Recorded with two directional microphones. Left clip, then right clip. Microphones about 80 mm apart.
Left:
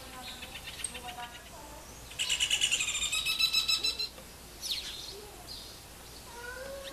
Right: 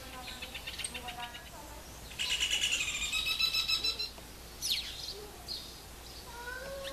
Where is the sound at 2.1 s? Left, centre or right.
Left.